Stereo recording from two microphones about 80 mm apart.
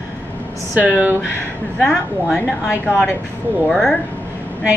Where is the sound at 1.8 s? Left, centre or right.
Centre.